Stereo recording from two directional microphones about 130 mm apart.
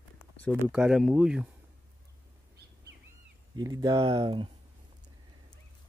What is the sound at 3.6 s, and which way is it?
Speech, 30° right (ahead or behind).